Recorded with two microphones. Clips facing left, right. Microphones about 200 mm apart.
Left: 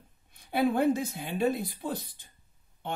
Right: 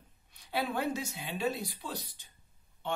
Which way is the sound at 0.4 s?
55° left (ahead or behind).